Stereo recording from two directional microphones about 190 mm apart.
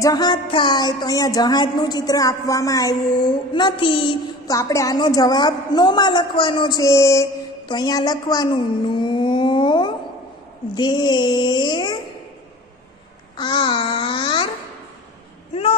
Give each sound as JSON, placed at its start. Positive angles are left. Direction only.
{"t": 0.0, "sound": "speech", "side_deg": 20}
{"t": 13.4, "sound": "speech", "side_deg": 25}